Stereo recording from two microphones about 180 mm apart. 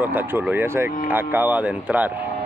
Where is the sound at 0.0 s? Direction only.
10° right (ahead or behind).